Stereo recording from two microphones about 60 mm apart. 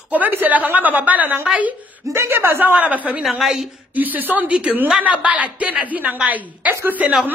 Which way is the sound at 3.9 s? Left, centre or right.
Right.